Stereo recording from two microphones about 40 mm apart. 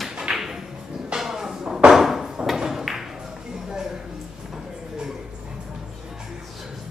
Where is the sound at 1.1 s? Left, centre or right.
Centre.